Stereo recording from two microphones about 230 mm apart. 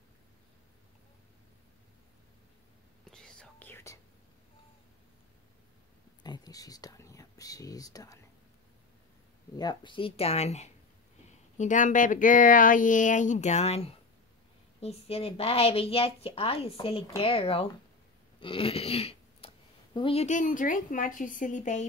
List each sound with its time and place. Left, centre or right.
3.1 s whispering: centre
6.2 s speech: centre
9.6 s a woman's voice: centre